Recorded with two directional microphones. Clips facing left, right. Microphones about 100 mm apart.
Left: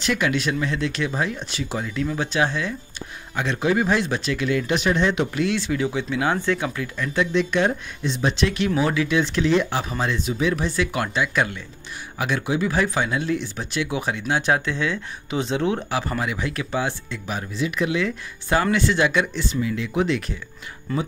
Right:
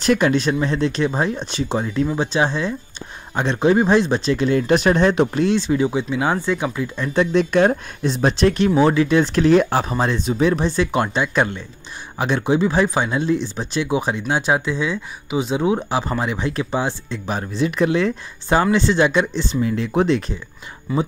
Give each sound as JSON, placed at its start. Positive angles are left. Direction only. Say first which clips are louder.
{"t": 0.0, "sound": "speech", "louder": "right 6 dB", "side_deg": -40}
{"t": 5.6, "sound": "speech", "louder": "right 5 dB", "side_deg": -25}
{"t": 7.2, "sound": "speech", "louder": "right 5 dB", "side_deg": -40}
{"t": 19.5, "sound": "speech", "louder": "right 5 dB", "side_deg": -35}
{"t": 20.9, "sound": "speech", "louder": "right 4 dB", "side_deg": -5}